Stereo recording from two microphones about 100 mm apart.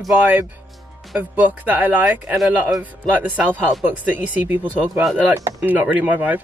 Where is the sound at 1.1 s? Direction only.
15° right (ahead or behind).